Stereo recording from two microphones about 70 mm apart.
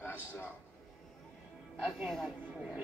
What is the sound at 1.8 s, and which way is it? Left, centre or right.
Speech, centre.